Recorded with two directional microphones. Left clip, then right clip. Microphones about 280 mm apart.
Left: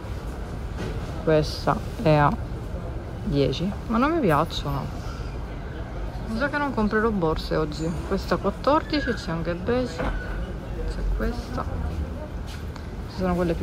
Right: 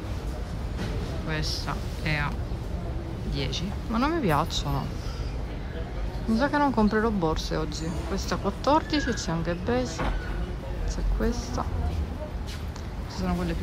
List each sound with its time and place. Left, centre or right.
1.3 s speech: centre
3.3 s speech: centre
6.3 s speech: centre
9.0 s speech: right
9.3 s speech: centre
13.2 s speech: centre